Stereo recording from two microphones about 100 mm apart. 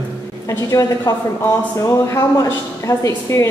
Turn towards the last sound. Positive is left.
turn(degrees=30)  # may be behind; listen again after turning